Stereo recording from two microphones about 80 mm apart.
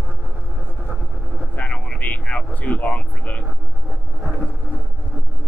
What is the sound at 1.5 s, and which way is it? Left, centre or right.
Vehicle, centre.